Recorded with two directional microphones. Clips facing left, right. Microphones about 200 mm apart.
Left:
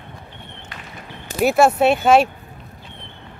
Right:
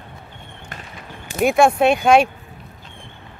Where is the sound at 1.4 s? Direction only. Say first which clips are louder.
Even; 5° left (ahead or behind).